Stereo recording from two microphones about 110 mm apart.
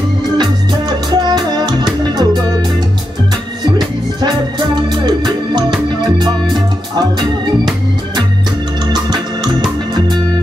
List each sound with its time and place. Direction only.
1.1 s music: 40° right (ahead or behind)
3.6 s music: 40° right (ahead or behind)